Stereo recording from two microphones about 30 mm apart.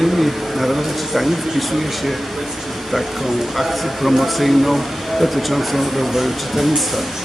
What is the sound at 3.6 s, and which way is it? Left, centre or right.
Speech, centre.